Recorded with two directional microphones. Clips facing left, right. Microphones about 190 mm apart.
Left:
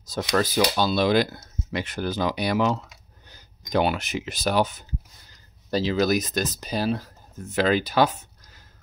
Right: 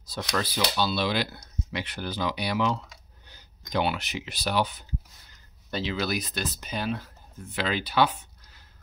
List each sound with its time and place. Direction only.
0.0 s speech: 45° left (ahead or behind)